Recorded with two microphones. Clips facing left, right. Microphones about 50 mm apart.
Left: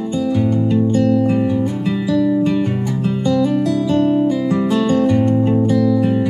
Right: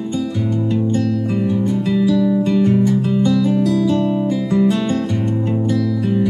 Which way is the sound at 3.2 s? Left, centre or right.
Left.